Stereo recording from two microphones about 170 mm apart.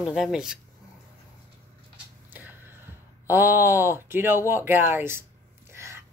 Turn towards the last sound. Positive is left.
turn(degrees=-15)  # may be behind; listen again after turning